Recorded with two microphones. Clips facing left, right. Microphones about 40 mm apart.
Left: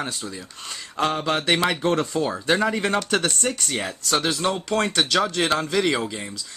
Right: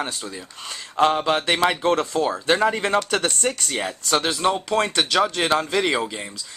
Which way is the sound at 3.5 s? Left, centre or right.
Centre.